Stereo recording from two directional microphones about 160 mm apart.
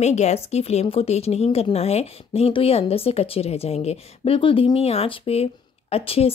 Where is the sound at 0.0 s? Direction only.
45° left (ahead or behind).